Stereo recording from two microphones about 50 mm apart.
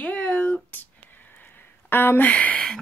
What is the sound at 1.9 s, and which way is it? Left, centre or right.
Speech, left.